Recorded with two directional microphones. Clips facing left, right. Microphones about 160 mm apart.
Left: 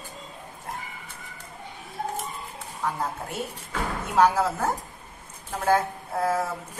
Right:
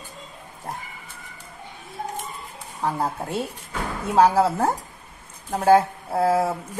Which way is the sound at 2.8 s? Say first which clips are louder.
Right 4 dB; 30° right (ahead or behind).